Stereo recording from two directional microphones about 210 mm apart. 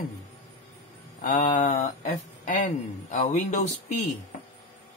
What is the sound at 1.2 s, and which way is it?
Speech, 40° left (ahead or behind).